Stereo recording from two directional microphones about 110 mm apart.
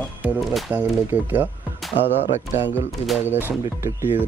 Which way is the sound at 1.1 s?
20° right (ahead or behind).